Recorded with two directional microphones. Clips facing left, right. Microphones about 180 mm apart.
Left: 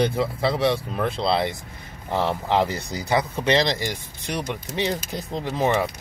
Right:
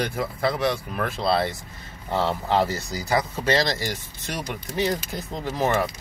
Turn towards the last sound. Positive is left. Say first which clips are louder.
# left 1 dB
turn(degrees=15)  # may be behind; listen again after turning